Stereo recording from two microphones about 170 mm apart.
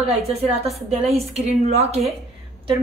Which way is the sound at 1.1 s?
40° right (ahead or behind).